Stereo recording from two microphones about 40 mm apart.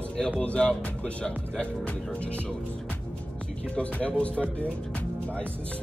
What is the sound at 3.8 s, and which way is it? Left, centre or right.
Speech, left.